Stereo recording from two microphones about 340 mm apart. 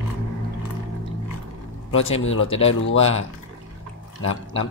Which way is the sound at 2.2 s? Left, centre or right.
Left.